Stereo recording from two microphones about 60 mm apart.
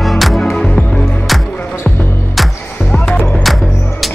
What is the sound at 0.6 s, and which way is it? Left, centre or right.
Music, centre.